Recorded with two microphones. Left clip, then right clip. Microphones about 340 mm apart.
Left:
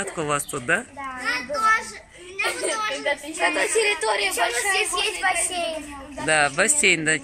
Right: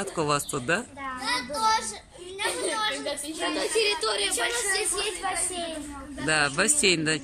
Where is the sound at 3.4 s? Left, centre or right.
Left.